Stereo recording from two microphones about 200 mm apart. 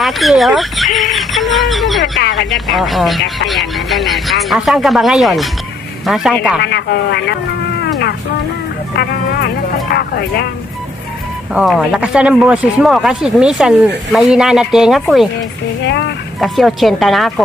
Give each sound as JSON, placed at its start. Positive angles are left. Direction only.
{"t": 0.0, "sound": "speech", "side_deg": 0}
{"t": 1.1, "sound": "a sound", "side_deg": 0}
{"t": 2.5, "sound": "speech", "side_deg": 0}
{"t": 6.6, "sound": "speech", "side_deg": 55}
{"t": 7.8, "sound": "a sound", "side_deg": 55}
{"t": 8.9, "sound": "speech", "side_deg": 50}
{"t": 11.5, "sound": "speech", "side_deg": 0}
{"t": 15.8, "sound": "speech", "side_deg": 60}
{"t": 16.3, "sound": "speech", "side_deg": 0}